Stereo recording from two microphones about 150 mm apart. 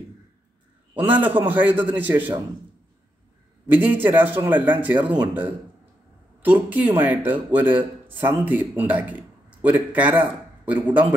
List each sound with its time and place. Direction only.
0.9 s speech: 10° right (ahead or behind)
3.7 s speech: 10° right (ahead or behind)